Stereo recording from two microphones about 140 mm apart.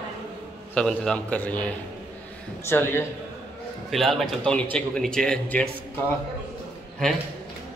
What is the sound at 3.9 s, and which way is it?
A man's voice, centre (ahead or behind).